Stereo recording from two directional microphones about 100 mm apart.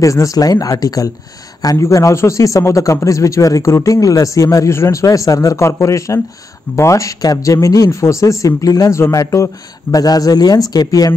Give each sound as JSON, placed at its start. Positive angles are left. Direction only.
{"t": 0.0, "sound": "a man's voice", "side_deg": 35}